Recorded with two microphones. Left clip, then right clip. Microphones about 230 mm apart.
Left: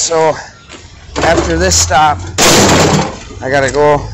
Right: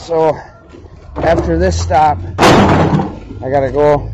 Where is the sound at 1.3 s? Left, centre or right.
Centre.